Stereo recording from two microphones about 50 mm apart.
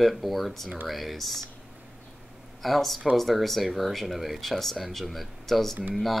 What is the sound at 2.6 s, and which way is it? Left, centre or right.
Speech, centre.